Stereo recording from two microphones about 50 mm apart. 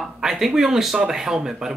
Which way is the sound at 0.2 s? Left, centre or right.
Centre.